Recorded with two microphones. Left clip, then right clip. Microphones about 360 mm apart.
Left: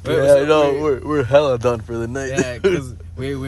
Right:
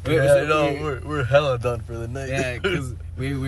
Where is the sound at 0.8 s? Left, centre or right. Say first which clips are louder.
Left 8 dB; centre.